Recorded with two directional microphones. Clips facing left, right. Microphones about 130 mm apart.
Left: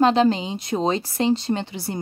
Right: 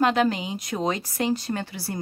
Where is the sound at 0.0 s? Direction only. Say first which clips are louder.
Left 4 dB; 30° left (ahead or behind).